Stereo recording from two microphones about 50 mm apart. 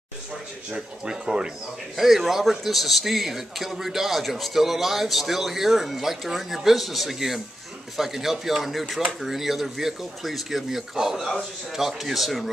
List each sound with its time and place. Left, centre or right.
0.7 s speech: centre
2.0 s a man's voice: centre